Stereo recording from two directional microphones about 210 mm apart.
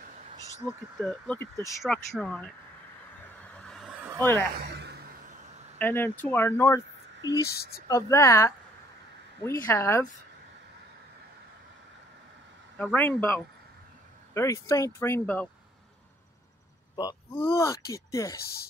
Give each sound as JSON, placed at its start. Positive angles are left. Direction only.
{"t": 1.0, "sound": "speech", "side_deg": 5}
{"t": 3.5, "sound": "a sound", "side_deg": 0}
{"t": 4.2, "sound": "speech", "side_deg": 10}
{"t": 4.6, "sound": "chuckle", "side_deg": -50}
{"t": 5.8, "sound": "speech", "side_deg": 10}
{"t": 7.4, "sound": "speech", "side_deg": 50}
{"t": 7.9, "sound": "speech", "side_deg": 15}
{"t": 12.7, "sound": "speech", "side_deg": 10}
{"t": 16.9, "sound": "speech", "side_deg": 20}